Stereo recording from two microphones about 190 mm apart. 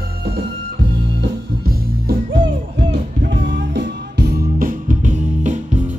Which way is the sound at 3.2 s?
70° right (ahead or behind).